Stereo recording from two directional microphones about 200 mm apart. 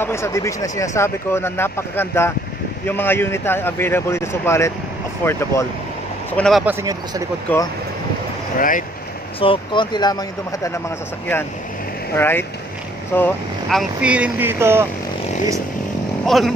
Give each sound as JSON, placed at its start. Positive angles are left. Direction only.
{"t": 0.0, "sound": "speech", "side_deg": 15}
{"t": 6.6, "sound": "speech", "side_deg": -10}
{"t": 7.5, "sound": "speech", "side_deg": 10}
{"t": 8.5, "sound": "speech", "side_deg": 45}
{"t": 9.4, "sound": "speech", "side_deg": 25}
{"t": 12.2, "sound": "speech", "side_deg": 10}
{"t": 16.3, "sound": "speech", "side_deg": 0}